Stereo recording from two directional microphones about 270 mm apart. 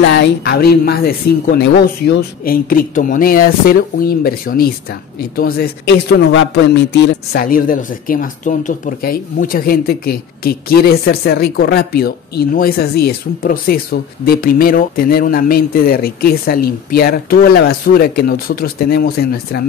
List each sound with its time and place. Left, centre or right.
0.0 s speech: left